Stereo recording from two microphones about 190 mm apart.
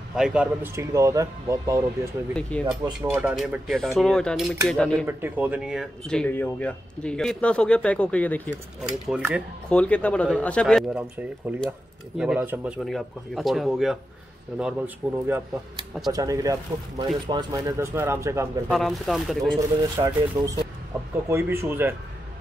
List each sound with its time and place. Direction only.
0.1 s speech: 5° right (ahead or behind)
2.3 s speech: 5° left (ahead or behind)
2.8 s speech: 10° right (ahead or behind)
3.3 s speech: centre (ahead or behind)
5.0 s speech: 10° right (ahead or behind); by 8.5 s 5° left (ahead or behind)
9.0 s speech: 5° right (ahead or behind)
9.7 s speech: 5° left (ahead or behind)
11.0 s speech: 10° right (ahead or behind)
18.7 s speech: centre (ahead or behind)
19.6 s speech: 15° right (ahead or behind)